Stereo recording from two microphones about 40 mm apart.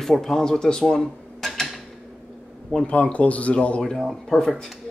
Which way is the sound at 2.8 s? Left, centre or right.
Left.